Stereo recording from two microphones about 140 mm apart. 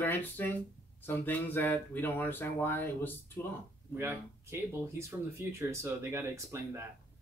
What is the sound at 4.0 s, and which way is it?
Speech, 15° right (ahead or behind).